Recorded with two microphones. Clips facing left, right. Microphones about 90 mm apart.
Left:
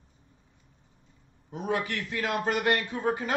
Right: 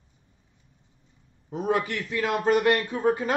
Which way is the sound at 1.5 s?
40° right (ahead or behind).